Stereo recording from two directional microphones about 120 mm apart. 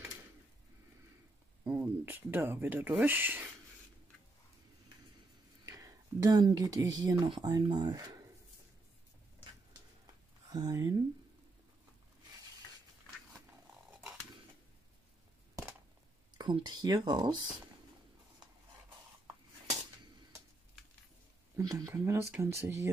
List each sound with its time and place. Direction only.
1.6 s speech: 15° right (ahead or behind)
5.7 s speech: 30° right (ahead or behind)
10.5 s speech: 35° right (ahead or behind)
16.3 s speech: 40° right (ahead or behind)
21.5 s speech: 30° right (ahead or behind)